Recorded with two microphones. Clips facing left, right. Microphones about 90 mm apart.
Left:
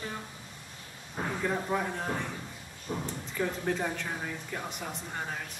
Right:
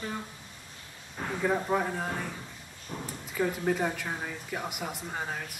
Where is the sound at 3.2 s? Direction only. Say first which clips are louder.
Right 4 dB; 5° right (ahead or behind).